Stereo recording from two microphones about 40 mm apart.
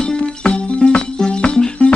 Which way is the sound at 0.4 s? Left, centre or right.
Left.